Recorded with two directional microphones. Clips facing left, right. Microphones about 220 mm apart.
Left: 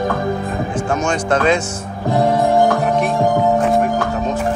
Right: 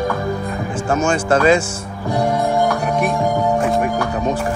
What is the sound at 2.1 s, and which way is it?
Music, 50° left (ahead or behind).